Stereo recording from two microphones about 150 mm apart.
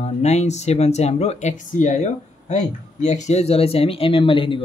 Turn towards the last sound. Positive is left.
turn(degrees=35)  # may be behind; listen again after turning